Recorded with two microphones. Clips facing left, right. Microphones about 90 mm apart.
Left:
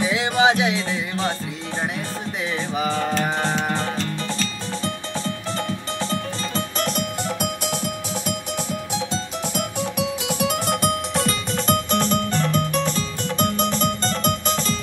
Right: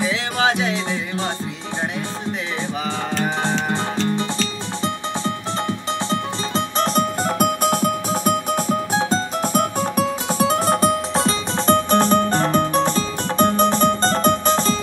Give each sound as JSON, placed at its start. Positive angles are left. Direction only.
{"t": 0.1, "sound": "music", "side_deg": 15}
{"t": 3.7, "sound": "music", "side_deg": -30}
{"t": 6.0, "sound": "music", "side_deg": -30}